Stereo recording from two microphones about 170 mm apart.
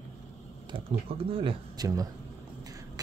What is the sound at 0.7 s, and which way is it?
Speech, 35° right (ahead or behind).